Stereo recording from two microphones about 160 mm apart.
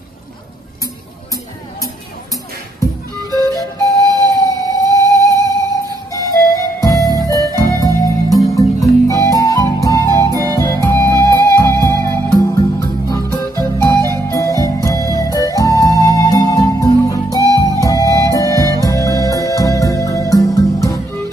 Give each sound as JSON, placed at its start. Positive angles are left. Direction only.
{"t": 3.3, "sound": "music", "side_deg": 20}
{"t": 6.8, "sound": "music", "side_deg": 20}
{"t": 17.5, "sound": "flute", "side_deg": -20}
{"t": 17.7, "sound": "music", "side_deg": 20}